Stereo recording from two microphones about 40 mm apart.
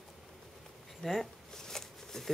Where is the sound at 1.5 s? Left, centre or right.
Centre.